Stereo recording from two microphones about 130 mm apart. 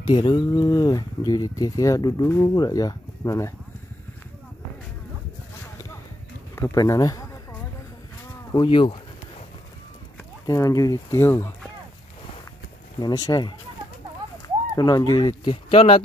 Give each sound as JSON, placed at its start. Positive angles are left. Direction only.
{"t": 0.0, "sound": "speech", "side_deg": 35}
{"t": 6.5, "sound": "speech", "side_deg": 25}
{"t": 8.5, "sound": "speech", "side_deg": 40}
{"t": 10.4, "sound": "speech", "side_deg": 25}
{"t": 13.0, "sound": "speech", "side_deg": 30}
{"t": 14.8, "sound": "speech", "side_deg": 25}